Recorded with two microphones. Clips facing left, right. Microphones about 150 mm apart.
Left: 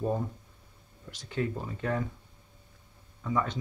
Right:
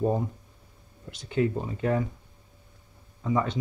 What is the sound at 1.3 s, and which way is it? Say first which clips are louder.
Speech: right 6 dB; 20° right (ahead or behind).